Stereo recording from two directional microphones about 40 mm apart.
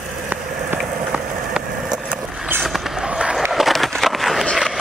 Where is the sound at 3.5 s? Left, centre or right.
Centre.